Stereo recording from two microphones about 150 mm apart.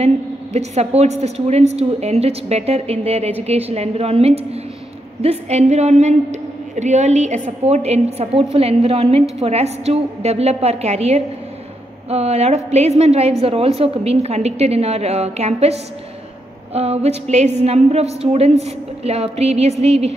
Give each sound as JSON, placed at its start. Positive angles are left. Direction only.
{"t": 0.0, "sound": "a woman's voice", "side_deg": -45}